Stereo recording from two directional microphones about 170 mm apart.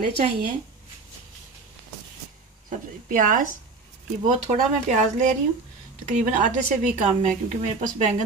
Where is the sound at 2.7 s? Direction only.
50° right (ahead or behind).